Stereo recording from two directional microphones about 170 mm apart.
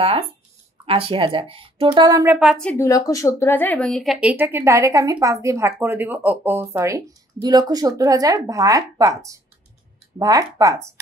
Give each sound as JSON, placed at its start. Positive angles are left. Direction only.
{"t": 0.0, "sound": "speech", "side_deg": -35}
{"t": 2.3, "sound": "a woman's voice", "side_deg": 0}
{"t": 2.7, "sound": "speech", "side_deg": 20}